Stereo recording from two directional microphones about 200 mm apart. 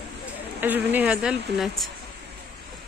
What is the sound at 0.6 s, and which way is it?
A woman's voice, 10° right (ahead or behind).